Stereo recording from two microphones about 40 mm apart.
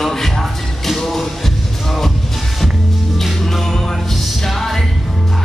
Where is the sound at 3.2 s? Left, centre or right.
Centre.